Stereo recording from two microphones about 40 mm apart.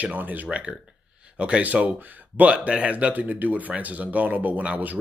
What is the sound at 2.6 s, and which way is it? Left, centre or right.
Speech, right.